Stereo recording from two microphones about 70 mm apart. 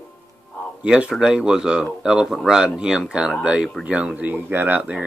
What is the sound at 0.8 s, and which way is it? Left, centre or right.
Speech, centre.